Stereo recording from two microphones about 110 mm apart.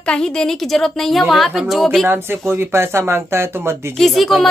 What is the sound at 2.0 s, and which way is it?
Speech, 20° right (ahead or behind).